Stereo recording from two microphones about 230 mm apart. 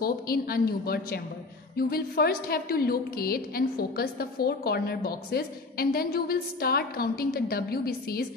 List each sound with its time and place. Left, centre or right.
0.0 s a woman's voice: left